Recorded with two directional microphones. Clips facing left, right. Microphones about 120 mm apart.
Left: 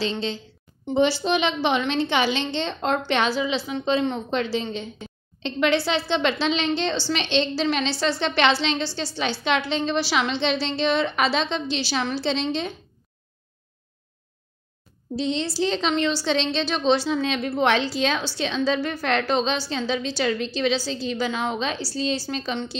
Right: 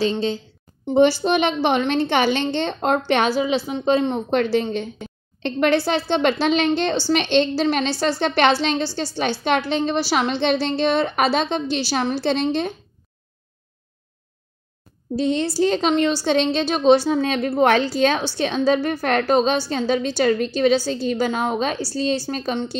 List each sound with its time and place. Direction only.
0.9 s a woman's voice: 45° right (ahead or behind)
15.1 s a woman's voice: 50° right (ahead or behind)